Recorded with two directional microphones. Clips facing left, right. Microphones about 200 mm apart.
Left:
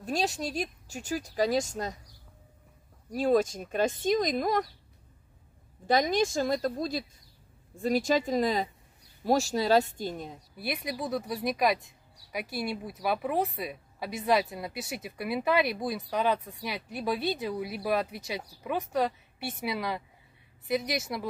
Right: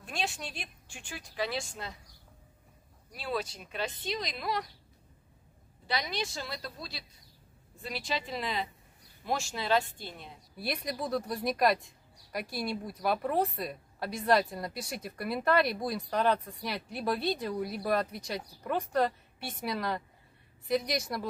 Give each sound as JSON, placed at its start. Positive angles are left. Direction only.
{"t": 0.0, "sound": "speech", "side_deg": 40}
{"t": 3.1, "sound": "speech", "side_deg": 45}
{"t": 5.9, "sound": "speech", "side_deg": 45}
{"t": 10.6, "sound": "speech", "side_deg": 5}